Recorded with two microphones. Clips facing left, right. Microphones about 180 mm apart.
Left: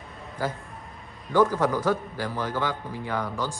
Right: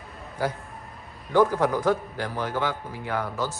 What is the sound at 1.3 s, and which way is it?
A man's voice, 10° right (ahead or behind).